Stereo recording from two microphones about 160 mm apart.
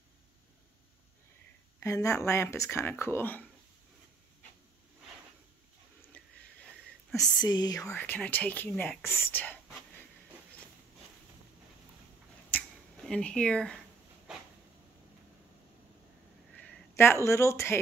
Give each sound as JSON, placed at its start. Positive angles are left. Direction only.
{"t": 1.8, "sound": "speech", "side_deg": 20}
{"t": 6.1, "sound": "whispering", "side_deg": 5}
{"t": 7.4, "sound": "speech", "side_deg": 25}
{"t": 12.4, "sound": "finger snapping", "side_deg": 10}
{"t": 14.3, "sound": "a sound", "side_deg": -5}
{"t": 16.5, "sound": "a sound", "side_deg": 5}
{"t": 16.9, "sound": "speech", "side_deg": 15}